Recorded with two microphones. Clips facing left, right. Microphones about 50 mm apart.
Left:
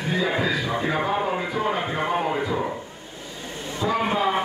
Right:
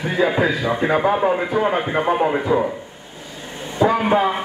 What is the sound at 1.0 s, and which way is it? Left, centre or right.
A man's voice, right.